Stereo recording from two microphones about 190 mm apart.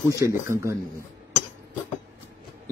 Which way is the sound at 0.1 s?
15° right (ahead or behind).